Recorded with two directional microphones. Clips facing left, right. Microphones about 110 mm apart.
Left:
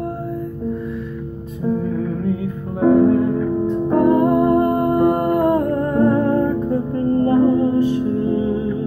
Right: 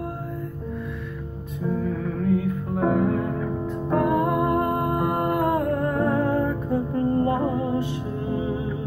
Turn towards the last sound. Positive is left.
turn(degrees=-20)  # may be behind; listen again after turning